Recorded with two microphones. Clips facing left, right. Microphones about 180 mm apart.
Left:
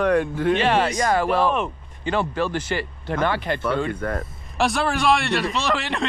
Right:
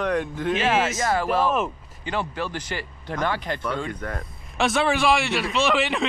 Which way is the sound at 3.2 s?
65° left (ahead or behind).